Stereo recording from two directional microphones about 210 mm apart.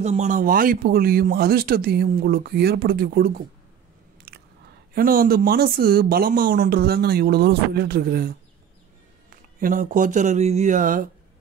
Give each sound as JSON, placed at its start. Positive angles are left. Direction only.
{"t": 0.0, "sound": "speech", "side_deg": -35}
{"t": 4.3, "sound": "biting", "side_deg": -50}
{"t": 4.9, "sound": "speech", "side_deg": -45}